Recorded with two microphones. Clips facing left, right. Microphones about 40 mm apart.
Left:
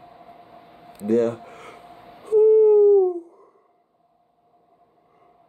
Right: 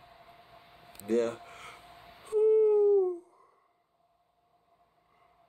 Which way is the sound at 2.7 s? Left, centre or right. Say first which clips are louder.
Left 9 dB; left.